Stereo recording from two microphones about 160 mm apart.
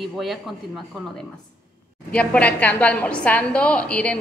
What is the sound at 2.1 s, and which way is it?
A woman's voice, 10° left (ahead or behind).